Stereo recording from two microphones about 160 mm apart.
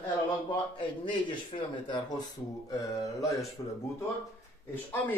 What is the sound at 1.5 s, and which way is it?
Speech, 35° left (ahead or behind).